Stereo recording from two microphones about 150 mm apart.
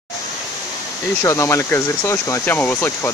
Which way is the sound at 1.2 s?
20° left (ahead or behind).